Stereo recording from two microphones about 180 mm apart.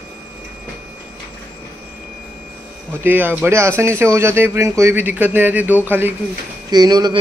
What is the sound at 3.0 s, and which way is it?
Speech, 10° right (ahead or behind).